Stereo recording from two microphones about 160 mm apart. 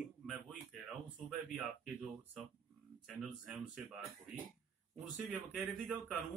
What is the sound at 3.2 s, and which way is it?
Speech, centre (ahead or behind).